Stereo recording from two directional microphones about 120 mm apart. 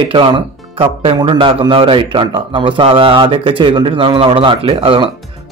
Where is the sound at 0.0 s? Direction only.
45° right (ahead or behind).